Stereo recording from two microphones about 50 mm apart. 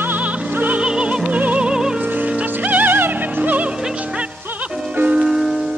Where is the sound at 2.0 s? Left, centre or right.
Right.